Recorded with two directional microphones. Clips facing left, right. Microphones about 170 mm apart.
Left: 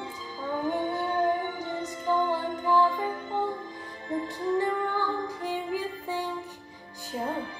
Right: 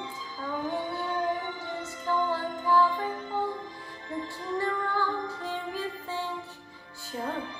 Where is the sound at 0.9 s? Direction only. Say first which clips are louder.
Left 4 dB; 45° left (ahead or behind).